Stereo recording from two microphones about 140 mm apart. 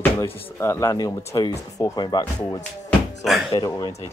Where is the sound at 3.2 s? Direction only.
Centre (ahead or behind).